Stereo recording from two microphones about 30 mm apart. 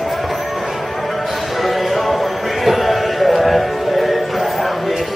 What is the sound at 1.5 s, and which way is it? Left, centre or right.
Music, centre.